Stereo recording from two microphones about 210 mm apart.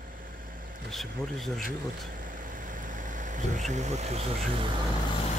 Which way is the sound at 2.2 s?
40° right (ahead or behind).